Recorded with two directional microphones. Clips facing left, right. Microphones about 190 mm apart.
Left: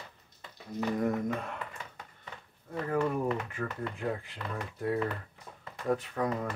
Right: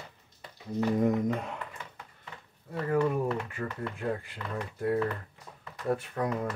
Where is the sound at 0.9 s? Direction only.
20° right (ahead or behind).